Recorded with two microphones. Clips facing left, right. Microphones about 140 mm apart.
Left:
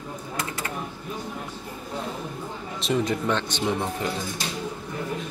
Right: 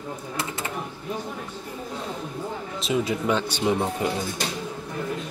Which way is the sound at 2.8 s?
5° right (ahead or behind).